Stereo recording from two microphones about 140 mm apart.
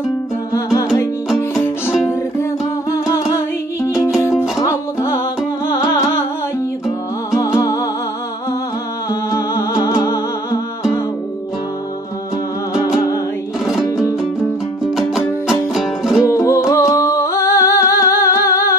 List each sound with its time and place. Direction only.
3.8 s music: 20° left (ahead or behind)
7.3 s music: 25° left (ahead or behind)
9.1 s music: 20° left (ahead or behind)
15.0 s music: centre (ahead or behind)
16.3 s music: 20° left (ahead or behind)